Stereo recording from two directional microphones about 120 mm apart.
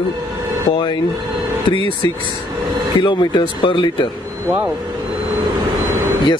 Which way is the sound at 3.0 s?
40° left (ahead or behind).